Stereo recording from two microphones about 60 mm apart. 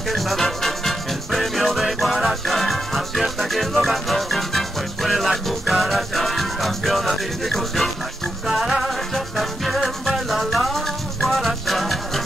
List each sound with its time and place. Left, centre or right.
0.1 s music: centre